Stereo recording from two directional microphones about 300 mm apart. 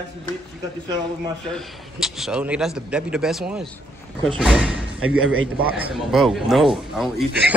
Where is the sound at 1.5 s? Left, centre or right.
Centre.